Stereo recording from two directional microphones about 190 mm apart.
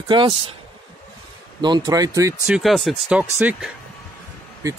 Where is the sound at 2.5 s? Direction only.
Centre (ahead or behind).